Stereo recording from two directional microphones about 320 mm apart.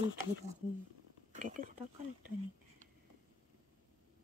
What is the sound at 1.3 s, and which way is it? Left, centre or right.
Speech, right.